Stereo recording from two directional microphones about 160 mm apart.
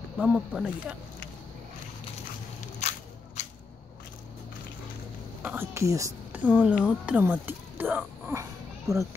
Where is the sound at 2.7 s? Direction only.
45° left (ahead or behind).